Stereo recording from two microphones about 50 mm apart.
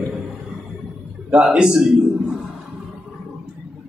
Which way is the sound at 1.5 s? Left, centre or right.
Centre.